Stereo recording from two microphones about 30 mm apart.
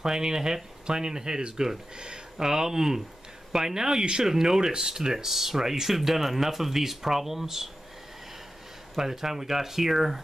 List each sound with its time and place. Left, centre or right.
0.0 s speech: right
8.9 s speech: centre